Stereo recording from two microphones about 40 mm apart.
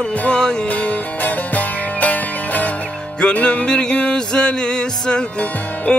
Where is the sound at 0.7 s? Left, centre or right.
Left.